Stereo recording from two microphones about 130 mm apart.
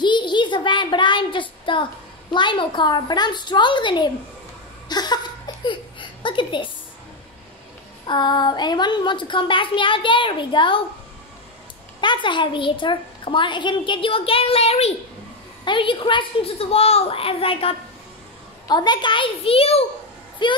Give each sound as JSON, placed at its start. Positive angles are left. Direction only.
{"t": 0.0, "sound": "child singing", "side_deg": 35}
{"t": 2.3, "sound": "a woman's voice", "side_deg": 40}
{"t": 4.8, "sound": "a sound", "side_deg": 30}
{"t": 5.7, "sound": "speech", "side_deg": 40}
{"t": 8.1, "sound": "a woman's voice", "side_deg": 35}
{"t": 12.0, "sound": "a woman's voice", "side_deg": 35}
{"t": 15.6, "sound": "a woman's voice", "side_deg": 40}
{"t": 18.7, "sound": "a woman's voice", "side_deg": 35}
{"t": 20.4, "sound": "a woman's voice", "side_deg": 35}